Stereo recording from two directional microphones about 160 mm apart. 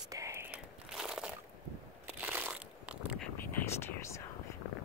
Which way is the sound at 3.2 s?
10° left (ahead or behind).